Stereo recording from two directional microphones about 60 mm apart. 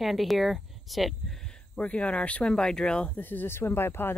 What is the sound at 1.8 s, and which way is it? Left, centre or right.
Speech, centre.